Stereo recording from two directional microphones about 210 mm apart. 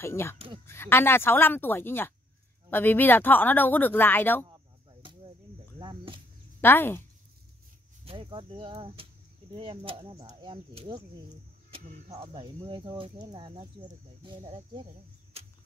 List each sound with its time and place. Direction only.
0.0 s speech: 10° left (ahead or behind)
5.8 s cricket: 25° right (ahead or behind)
6.6 s speech: 10° left (ahead or behind)
8.0 s speech: 25° right (ahead or behind)